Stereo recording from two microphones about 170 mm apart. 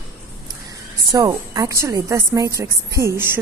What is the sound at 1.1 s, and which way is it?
A woman's voice, 20° right (ahead or behind).